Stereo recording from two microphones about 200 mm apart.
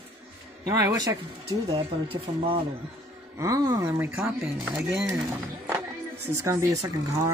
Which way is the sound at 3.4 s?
15° right (ahead or behind).